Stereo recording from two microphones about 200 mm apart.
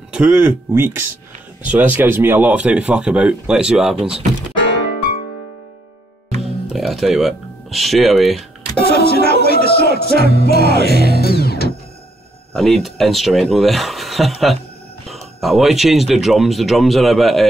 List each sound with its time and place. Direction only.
0.1 s speech: 5° right (ahead or behind)
6.7 s speech: centre (ahead or behind)
8.7 s speech: 50° left (ahead or behind)
10.1 s music: 50° left (ahead or behind)
12.5 s speech: centre (ahead or behind)